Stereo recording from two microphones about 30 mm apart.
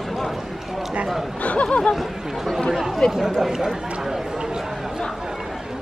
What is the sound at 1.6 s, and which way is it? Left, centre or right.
Speech, left.